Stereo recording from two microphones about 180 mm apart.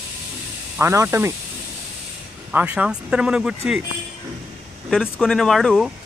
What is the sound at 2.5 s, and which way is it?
Speech, 5° right (ahead or behind).